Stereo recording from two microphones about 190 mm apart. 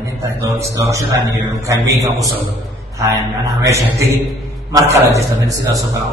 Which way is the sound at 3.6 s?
15° right (ahead or behind).